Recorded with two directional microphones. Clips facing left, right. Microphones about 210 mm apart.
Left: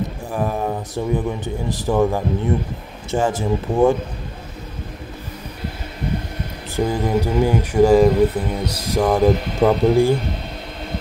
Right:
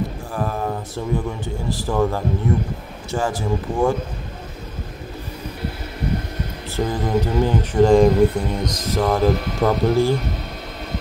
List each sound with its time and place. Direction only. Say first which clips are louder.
0.3 s speech: left 4 dB; 15° left (ahead or behind)
6.8 s speech: left 2 dB; 10° left (ahead or behind)